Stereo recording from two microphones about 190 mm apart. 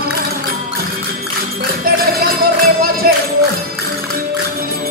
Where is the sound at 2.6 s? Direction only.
55° right (ahead or behind).